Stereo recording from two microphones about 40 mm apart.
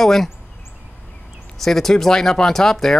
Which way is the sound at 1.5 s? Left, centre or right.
Centre.